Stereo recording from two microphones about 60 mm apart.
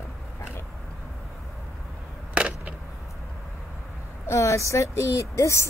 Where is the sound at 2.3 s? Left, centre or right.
Right.